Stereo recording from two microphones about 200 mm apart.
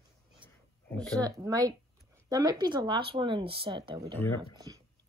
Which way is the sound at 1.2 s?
20° right (ahead or behind).